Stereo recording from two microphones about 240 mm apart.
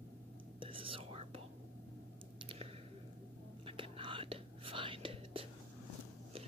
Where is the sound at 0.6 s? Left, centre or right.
Right.